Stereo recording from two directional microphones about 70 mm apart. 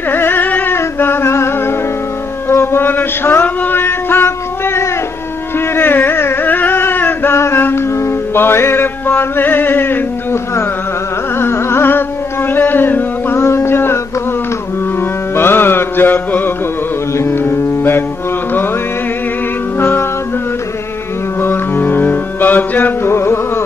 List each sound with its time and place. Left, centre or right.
0.1 s music: left
0.7 s singing: left
2.5 s music: left
11.3 s music: left
12.5 s a sound: left
13.4 s a sound: left
15.3 s music: left
19.8 s music: left
21.4 s music: left
23.1 s music: left